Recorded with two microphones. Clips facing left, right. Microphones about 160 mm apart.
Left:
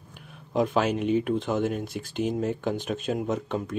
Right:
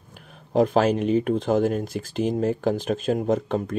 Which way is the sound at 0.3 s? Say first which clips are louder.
Right 5 dB; 40° right (ahead or behind).